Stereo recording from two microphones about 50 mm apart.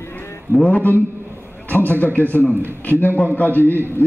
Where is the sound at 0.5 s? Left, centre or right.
Left.